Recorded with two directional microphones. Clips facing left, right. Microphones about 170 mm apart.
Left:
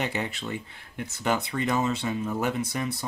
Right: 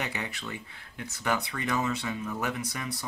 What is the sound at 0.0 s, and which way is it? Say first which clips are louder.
Speech: left 5 dB; 30° left (ahead or behind).